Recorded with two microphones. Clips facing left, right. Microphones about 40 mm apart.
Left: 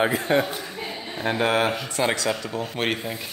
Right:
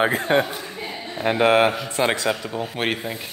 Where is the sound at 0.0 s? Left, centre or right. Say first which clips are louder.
Right 2 dB; right.